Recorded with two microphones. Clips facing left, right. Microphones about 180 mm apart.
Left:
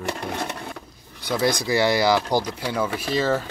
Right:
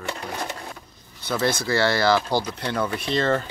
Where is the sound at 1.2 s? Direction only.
15° left (ahead or behind).